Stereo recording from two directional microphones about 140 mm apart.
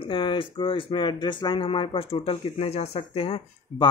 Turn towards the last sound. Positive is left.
turn(degrees=40)  # may be behind; listen again after turning